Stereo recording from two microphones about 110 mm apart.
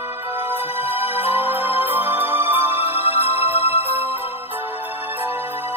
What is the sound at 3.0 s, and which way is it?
Music, 60° left (ahead or behind).